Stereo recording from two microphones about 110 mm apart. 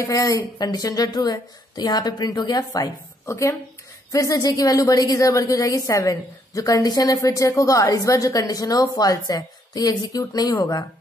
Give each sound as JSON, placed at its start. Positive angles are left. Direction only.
{"t": 0.0, "sound": "a woman's voice", "side_deg": 30}
{"t": 3.3, "sound": "a woman's voice", "side_deg": 25}